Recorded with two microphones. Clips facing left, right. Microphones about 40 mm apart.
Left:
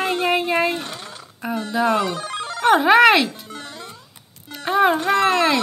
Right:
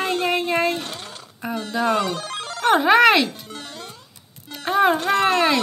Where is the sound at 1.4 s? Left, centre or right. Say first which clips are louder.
Left 2 dB; centre.